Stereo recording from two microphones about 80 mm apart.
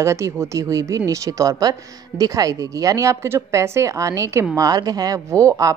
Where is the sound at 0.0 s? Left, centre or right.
Right.